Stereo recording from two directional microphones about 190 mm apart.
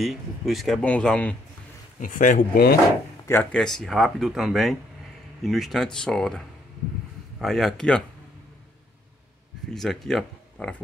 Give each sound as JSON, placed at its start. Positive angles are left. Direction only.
{"t": 0.0, "sound": "speech", "side_deg": 0}
{"t": 2.0, "sound": "speech", "side_deg": 45}
{"t": 3.3, "sound": "speech", "side_deg": 5}
{"t": 9.7, "sound": "speech", "side_deg": 0}